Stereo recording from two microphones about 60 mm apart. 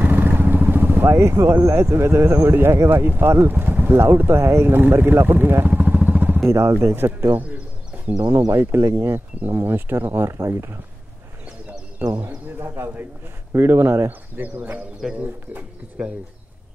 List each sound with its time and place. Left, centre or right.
0.0 s speech: right
6.5 s speech: right
7.1 s speech: right
8.5 s speech: right
12.0 s speech: right
14.3 s speech: right